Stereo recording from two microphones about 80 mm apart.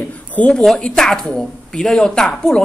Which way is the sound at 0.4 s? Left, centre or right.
Centre.